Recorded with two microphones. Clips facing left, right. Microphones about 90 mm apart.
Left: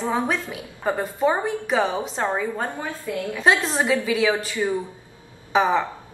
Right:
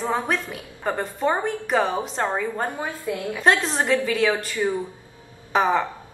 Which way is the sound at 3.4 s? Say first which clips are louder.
Even; centre (ahead or behind).